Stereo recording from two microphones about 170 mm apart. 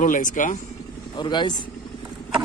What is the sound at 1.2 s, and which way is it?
Speech, 25° left (ahead or behind).